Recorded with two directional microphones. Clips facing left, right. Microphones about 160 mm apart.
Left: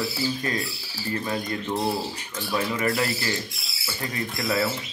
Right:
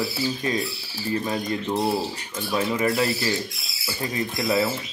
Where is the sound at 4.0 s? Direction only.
20° right (ahead or behind).